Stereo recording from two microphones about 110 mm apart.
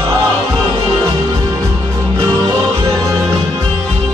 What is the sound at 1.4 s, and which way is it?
Music, 35° right (ahead or behind).